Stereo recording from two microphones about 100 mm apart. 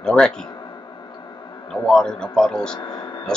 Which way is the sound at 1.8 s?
5° left (ahead or behind).